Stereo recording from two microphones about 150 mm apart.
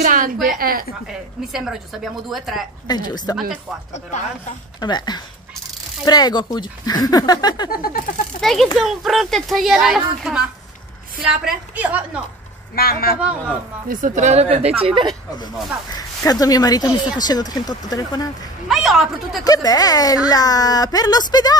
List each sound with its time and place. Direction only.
0.0 s a sound: 65° right (ahead or behind)
1.5 s speech: 5° right (ahead or behind)
2.9 s speech: 30° left (ahead or behind)
4.7 s speech: 30° left (ahead or behind)
7.7 s a sound: 75° left (ahead or behind)
8.4 s a woman's voice: centre (ahead or behind)
12.7 s a woman's voice: 90° left
13.8 s a woman's voice: 60° right (ahead or behind)
15.9 s speech: 25° left (ahead or behind)
18.7 s speech: centre (ahead or behind)
19.4 s speech: 25° left (ahead or behind)